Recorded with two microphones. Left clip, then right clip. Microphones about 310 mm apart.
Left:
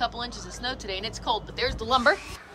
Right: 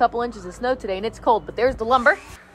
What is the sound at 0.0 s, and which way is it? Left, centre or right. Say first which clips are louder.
Speech: right 10 dB; centre.